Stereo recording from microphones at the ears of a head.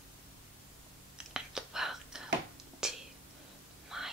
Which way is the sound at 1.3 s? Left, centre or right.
Centre.